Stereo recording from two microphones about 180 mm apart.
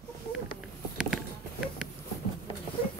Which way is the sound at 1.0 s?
Centre (ahead or behind).